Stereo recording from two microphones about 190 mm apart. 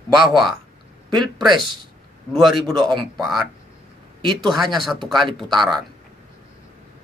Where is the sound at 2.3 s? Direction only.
Centre (ahead or behind).